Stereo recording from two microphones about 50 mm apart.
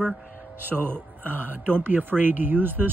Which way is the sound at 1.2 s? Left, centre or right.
Left.